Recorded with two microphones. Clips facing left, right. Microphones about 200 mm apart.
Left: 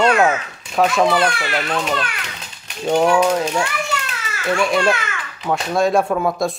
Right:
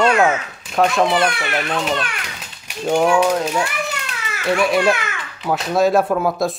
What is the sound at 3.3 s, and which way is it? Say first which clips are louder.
Speech: even; 5° right (ahead or behind).